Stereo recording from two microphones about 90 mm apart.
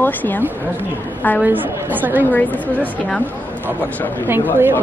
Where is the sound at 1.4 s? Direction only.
20° right (ahead or behind).